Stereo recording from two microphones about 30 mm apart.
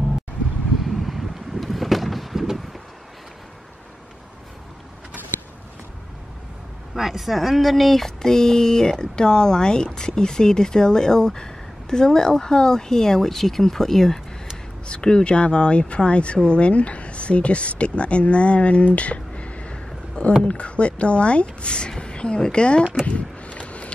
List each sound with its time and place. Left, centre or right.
0.7 s boat: centre
7.0 s speech: centre
8.3 s speech: centre
14.9 s a woman's voice: left
18.9 s a sound: left
20.4 s a woman's voice: left
23.0 s a sound: left